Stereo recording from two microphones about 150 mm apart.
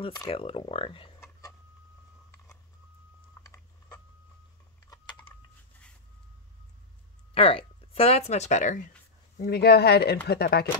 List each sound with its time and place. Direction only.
0.0 s speech: 30° left (ahead or behind)
3.4 s a sound: 25° left (ahead or behind)
4.8 s typing: 25° left (ahead or behind)
7.3 s speech: 40° left (ahead or behind); by 8.9 s 55° left (ahead or behind)
9.4 s speech: 90° left